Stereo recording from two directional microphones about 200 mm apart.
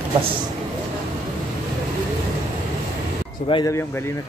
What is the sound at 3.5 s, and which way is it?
Speech, 20° left (ahead or behind).